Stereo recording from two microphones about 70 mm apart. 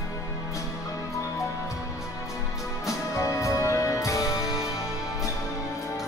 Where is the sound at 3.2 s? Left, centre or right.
Left.